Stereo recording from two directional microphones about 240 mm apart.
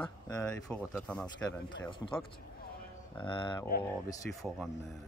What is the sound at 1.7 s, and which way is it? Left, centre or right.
Speech, centre.